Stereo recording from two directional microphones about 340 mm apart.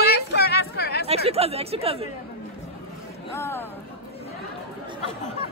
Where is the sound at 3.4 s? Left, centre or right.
Centre.